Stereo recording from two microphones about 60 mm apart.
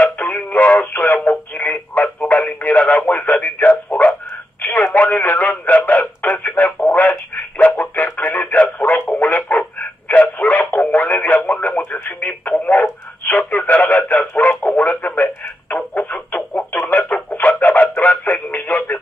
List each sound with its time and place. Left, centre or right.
0.0 s a sound: left
4.9 s radio: left
13.2 s telephone: left
14.3 s radio: left
15.7 s chicken: left
16.8 s radio: left